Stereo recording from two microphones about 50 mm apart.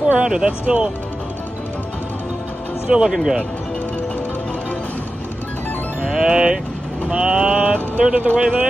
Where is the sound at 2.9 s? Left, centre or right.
Centre.